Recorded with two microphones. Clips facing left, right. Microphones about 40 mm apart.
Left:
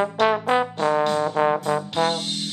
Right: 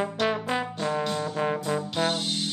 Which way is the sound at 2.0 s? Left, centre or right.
Left.